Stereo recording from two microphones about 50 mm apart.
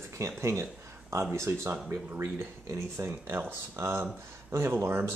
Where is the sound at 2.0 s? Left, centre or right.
Right.